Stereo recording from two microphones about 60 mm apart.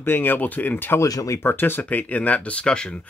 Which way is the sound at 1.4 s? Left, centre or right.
Left.